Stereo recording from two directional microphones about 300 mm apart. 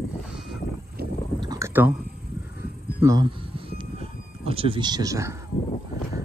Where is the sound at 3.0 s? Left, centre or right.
Centre.